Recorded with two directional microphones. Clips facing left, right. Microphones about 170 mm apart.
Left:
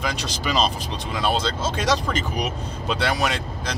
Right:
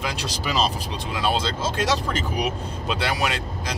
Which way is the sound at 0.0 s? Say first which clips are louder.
Left 1 dB; 5° right (ahead or behind).